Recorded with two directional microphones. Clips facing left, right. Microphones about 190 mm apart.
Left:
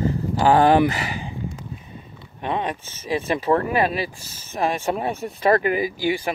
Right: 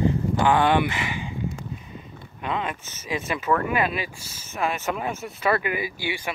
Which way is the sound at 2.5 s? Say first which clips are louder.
Left 3 dB; 35° left (ahead or behind).